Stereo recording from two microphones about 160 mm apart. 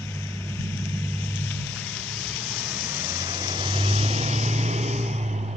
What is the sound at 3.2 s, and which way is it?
Vehicle, 30° right (ahead or behind).